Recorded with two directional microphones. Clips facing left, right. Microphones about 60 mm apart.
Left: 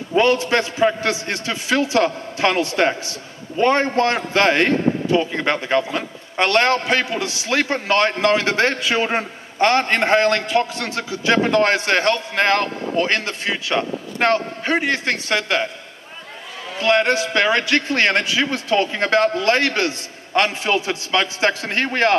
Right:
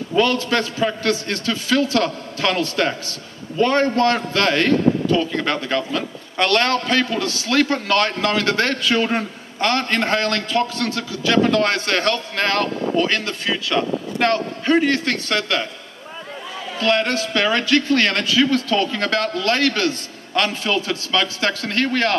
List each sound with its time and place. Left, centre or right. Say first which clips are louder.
0.1 s a man's voice: left 2 dB; left
16.8 s a man's voice: left 2 dB; left